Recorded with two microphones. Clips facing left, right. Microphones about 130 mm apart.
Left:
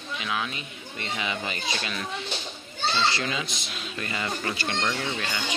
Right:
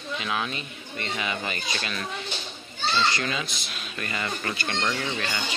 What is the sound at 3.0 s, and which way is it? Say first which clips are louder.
Speech: even; 25° left (ahead or behind).